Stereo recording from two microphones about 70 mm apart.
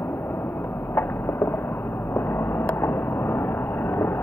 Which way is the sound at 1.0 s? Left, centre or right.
Left.